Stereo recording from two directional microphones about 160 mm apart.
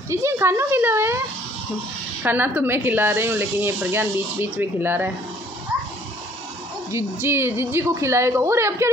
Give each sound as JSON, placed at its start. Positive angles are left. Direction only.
{"t": 0.1, "sound": "speech", "side_deg": -15}
{"t": 2.2, "sound": "speech", "side_deg": -10}
{"t": 6.9, "sound": "speech", "side_deg": -15}